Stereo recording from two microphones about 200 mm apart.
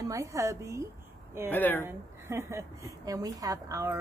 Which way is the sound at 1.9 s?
15° right (ahead or behind).